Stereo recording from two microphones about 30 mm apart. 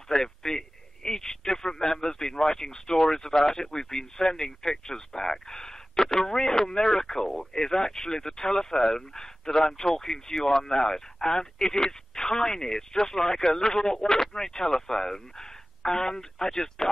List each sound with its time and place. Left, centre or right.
0.1 s a man's voice: left